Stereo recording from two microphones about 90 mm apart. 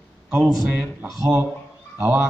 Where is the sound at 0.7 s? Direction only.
15° right (ahead or behind).